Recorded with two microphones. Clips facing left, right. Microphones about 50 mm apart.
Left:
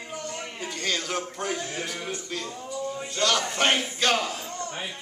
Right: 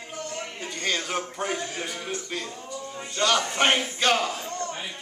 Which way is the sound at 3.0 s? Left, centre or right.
Centre.